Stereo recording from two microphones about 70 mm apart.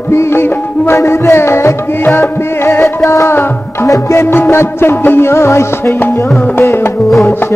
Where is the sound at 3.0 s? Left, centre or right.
Left.